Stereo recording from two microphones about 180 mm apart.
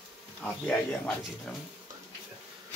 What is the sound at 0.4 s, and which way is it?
Speech, 5° left (ahead or behind).